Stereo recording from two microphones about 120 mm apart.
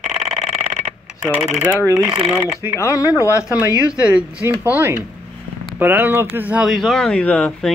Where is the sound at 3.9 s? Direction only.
10° right (ahead or behind).